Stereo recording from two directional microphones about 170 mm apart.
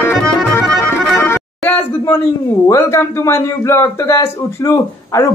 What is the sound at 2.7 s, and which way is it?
Speech, 15° left (ahead or behind).